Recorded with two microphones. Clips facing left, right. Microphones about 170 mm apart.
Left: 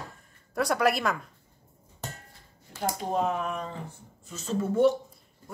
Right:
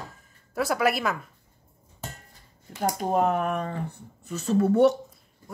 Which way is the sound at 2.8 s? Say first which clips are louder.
Right 4 dB; 50° right (ahead or behind).